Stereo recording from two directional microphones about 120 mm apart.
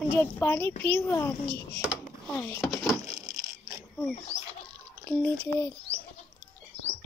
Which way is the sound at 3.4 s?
30° right (ahead or behind).